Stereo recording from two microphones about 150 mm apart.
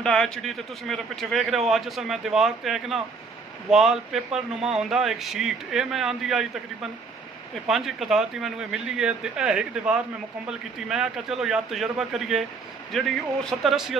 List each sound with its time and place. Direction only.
0.0 s a man's voice: 5° left (ahead or behind)